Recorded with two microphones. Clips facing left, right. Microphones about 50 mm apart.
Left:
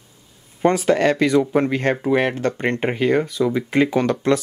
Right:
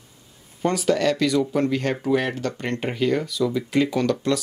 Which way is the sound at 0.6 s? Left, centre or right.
Left.